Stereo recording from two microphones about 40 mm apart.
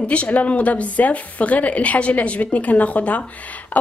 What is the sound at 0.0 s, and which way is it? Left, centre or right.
A woman's voice, left.